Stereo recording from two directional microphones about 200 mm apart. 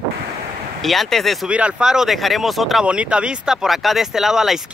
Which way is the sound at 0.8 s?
Centre (ahead or behind).